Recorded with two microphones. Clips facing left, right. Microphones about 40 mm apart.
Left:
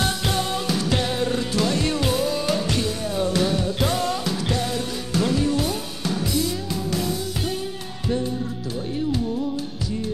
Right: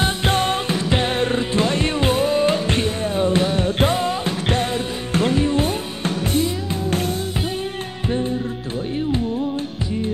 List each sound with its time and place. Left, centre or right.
0.0 s music: right
3.9 s music: right
4.5 s music: right